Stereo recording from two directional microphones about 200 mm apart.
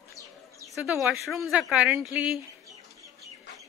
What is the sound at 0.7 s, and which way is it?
Speech, 5° right (ahead or behind).